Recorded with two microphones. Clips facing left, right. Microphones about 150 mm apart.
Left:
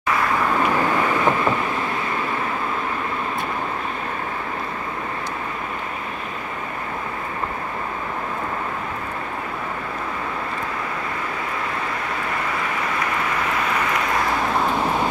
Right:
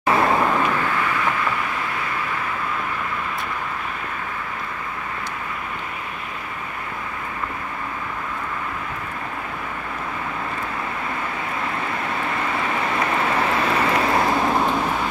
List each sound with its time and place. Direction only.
0.0 s vehicle: 30° right (ahead or behind)
1.1 s vehicle: 30° left (ahead or behind)
13.0 s vehicle: 30° right (ahead or behind)